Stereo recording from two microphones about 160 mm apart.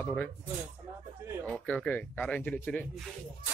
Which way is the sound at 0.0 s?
10° left (ahead or behind).